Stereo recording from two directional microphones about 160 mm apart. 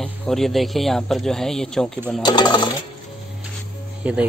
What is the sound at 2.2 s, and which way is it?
Speech, 25° left (ahead or behind).